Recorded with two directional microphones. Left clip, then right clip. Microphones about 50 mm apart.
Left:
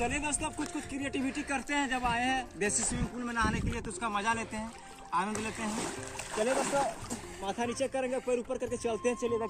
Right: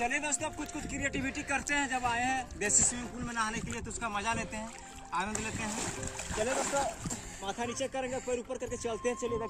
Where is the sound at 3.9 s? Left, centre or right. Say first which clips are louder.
Left 2 dB; right.